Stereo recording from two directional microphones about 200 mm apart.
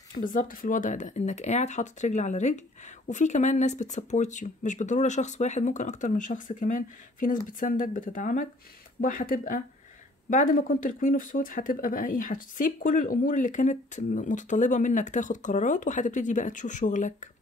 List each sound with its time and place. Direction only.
0.1 s speech: 45° left (ahead or behind)